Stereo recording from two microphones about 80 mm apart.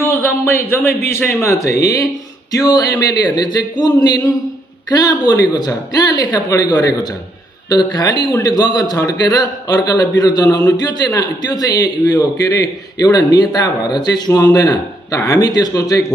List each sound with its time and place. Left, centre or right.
0.0 s speech: left
2.5 s a woman's voice: left
8.9 s speech: left
9.4 s a woman's voice: left